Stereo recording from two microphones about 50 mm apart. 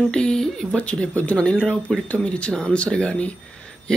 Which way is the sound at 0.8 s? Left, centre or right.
Left.